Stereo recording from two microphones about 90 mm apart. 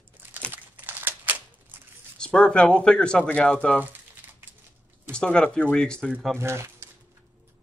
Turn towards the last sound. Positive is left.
turn(degrees=-30)  # may be behind; listen again after turning